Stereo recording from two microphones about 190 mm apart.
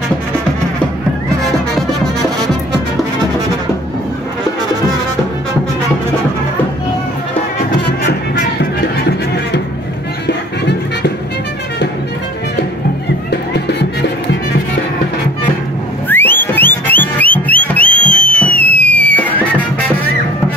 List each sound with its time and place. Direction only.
7.7 s music: 60° left (ahead or behind)
10.2 s music: 60° left (ahead or behind)
13.3 s music: 60° left (ahead or behind)
16.1 s music: 10° left (ahead or behind)